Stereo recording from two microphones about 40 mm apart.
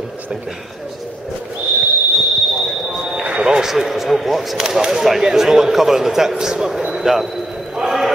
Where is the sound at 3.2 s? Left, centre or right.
Right.